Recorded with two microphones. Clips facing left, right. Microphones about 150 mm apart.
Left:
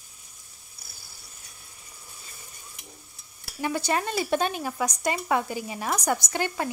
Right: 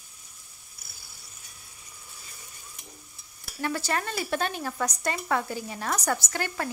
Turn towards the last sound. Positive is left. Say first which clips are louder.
# left 3 dB
turn(degrees=20)  # may be behind; listen again after turning